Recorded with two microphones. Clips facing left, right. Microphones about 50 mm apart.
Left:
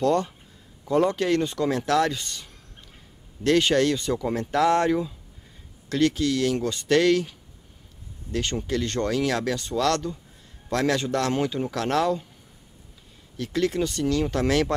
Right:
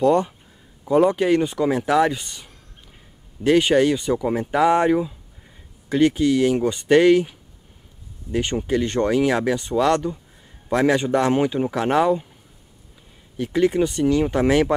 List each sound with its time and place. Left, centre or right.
0.0 s speech: centre
13.4 s speech: centre